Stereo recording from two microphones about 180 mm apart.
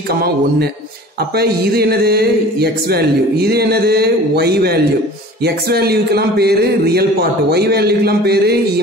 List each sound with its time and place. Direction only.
0.1 s speech: 60° right (ahead or behind)